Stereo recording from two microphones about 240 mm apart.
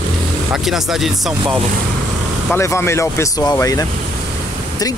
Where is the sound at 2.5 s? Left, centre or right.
Centre.